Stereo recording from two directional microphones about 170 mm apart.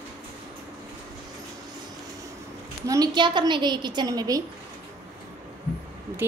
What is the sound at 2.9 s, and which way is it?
A woman's voice, 25° right (ahead or behind).